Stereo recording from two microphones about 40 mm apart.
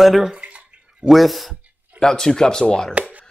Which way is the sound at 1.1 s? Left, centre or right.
Centre.